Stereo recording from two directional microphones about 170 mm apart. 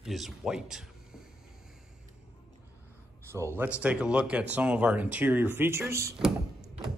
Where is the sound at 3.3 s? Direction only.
15° right (ahead or behind).